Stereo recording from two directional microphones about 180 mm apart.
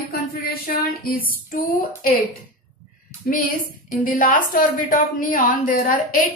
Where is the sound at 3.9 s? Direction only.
50° left (ahead or behind).